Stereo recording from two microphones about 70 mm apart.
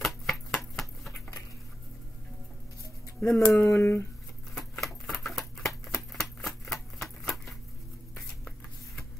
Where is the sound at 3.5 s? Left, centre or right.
Left.